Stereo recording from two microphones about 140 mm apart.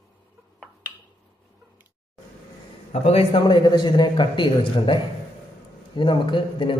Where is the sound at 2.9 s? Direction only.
50° left (ahead or behind).